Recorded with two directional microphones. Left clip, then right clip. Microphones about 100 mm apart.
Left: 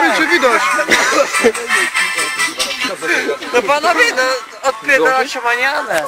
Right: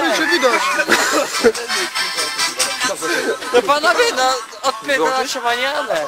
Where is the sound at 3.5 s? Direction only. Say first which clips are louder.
Left 1 dB; 80° right; by 4.3 s 60° right (ahead or behind).